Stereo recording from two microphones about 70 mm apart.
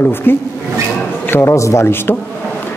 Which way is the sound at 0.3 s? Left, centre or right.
Left.